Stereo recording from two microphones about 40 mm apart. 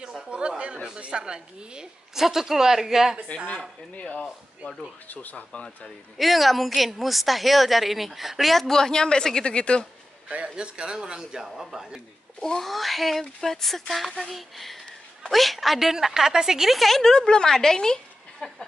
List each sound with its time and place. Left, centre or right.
0.3 s a sound: right
0.8 s a woman's voice: right
2.1 s a woman's voice: centre
3.9 s speech: left
5.0 s speech: left
6.1 s a woman's voice: centre
8.6 s a woman's voice: centre
10.2 s a man's voice: right
11.4 s a woman's voice: centre
12.4 s a woman's voice: centre
12.6 s a woman's voice: centre
16.7 s a woman's voice: centre